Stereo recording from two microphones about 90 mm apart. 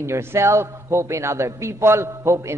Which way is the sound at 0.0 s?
30° right (ahead or behind).